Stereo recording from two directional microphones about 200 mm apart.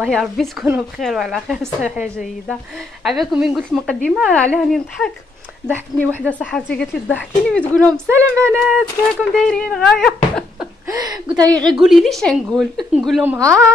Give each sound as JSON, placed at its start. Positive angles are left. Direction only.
{"t": 0.0, "sound": "a woman's voice", "side_deg": 0}
{"t": 8.1, "sound": "speech", "side_deg": -10}
{"t": 9.3, "sound": "speech", "side_deg": 5}
{"t": 10.9, "sound": "a woman's voice", "side_deg": -20}
{"t": 11.7, "sound": "speech", "side_deg": 0}
{"t": 13.2, "sound": "speech", "side_deg": -10}